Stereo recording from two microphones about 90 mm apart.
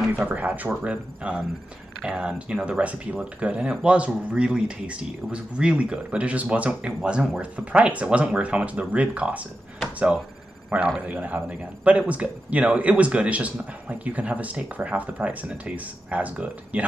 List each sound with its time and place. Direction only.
0.1 s speech: 15° right (ahead or behind)